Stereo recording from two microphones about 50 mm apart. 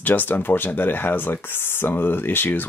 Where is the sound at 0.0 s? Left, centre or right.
Left.